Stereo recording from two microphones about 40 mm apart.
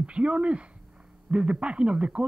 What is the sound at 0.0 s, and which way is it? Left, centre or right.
Speech, right.